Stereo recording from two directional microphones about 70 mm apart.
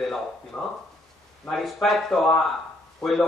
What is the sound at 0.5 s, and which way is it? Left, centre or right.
Speech, left.